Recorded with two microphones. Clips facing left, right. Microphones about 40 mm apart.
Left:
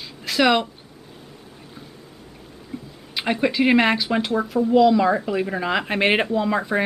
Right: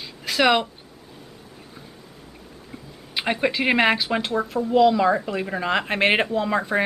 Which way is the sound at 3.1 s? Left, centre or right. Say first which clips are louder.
Left 2 dB; centre.